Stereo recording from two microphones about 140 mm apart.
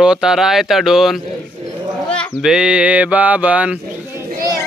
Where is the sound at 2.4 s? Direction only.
5° right (ahead or behind).